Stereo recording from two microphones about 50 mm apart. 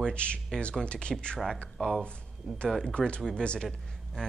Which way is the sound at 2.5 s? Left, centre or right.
Centre.